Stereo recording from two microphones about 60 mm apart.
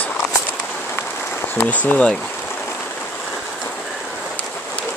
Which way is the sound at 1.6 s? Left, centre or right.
Left.